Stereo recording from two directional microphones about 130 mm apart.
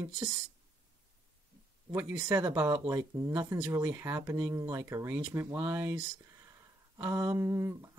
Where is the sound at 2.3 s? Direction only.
15° right (ahead or behind).